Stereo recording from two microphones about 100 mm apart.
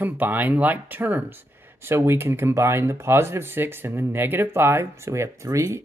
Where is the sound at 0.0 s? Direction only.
20° right (ahead or behind).